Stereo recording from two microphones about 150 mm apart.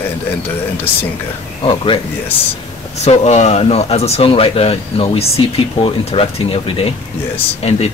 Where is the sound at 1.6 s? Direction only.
35° left (ahead or behind).